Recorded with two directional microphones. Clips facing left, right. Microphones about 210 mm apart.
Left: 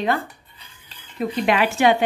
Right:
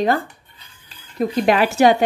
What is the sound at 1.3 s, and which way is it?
Speech, 40° right (ahead or behind).